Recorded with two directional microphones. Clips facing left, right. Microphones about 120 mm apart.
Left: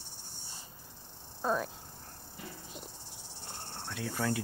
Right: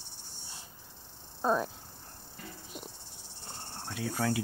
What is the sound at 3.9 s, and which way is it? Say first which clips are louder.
Speech: right 2 dB; 5° right (ahead or behind).